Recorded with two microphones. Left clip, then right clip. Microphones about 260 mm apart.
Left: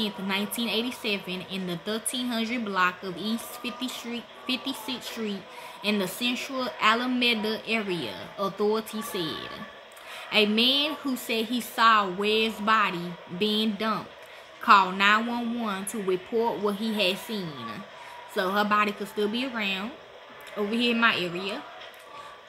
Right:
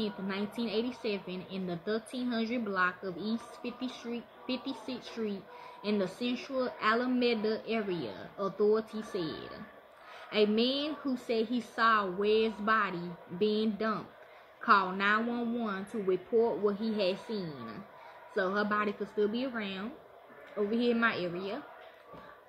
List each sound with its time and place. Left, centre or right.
0.0 s speech: centre